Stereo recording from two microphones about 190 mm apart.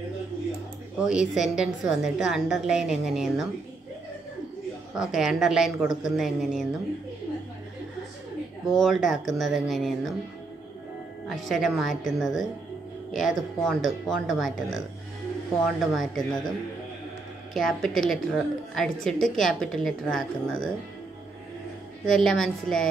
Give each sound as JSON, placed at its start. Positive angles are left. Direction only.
{"t": 1.0, "sound": "a woman's voice", "side_deg": -5}
{"t": 4.9, "sound": "a woman's voice", "side_deg": -5}
{"t": 8.7, "sound": "a woman's voice", "side_deg": 0}
{"t": 11.2, "sound": "a woman's voice", "side_deg": 0}
{"t": 17.6, "sound": "a woman's voice", "side_deg": 0}
{"t": 22.0, "sound": "a woman's voice", "side_deg": 5}